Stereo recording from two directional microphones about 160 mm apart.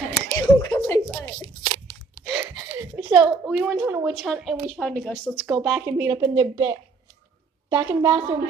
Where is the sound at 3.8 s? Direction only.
15° right (ahead or behind).